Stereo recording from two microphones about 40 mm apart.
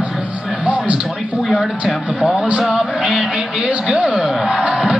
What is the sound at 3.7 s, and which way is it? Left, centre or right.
Speech, right.